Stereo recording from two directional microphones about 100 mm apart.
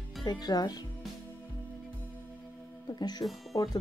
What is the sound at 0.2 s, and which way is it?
Speech, 45° left (ahead or behind).